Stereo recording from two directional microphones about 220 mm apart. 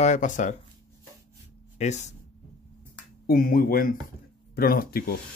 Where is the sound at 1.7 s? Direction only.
30° left (ahead or behind).